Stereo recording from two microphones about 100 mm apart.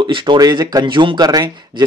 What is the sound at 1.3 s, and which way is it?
Speech, 40° right (ahead or behind).